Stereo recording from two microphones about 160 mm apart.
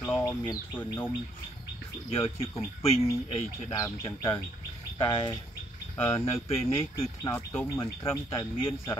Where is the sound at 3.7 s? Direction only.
25° left (ahead or behind).